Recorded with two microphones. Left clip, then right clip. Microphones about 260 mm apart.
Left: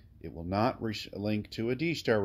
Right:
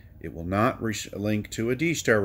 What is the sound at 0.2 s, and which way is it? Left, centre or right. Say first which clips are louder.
Speech: right 5 dB; centre.